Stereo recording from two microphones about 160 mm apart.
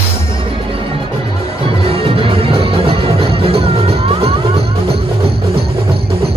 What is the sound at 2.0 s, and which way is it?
Music, 35° right (ahead or behind).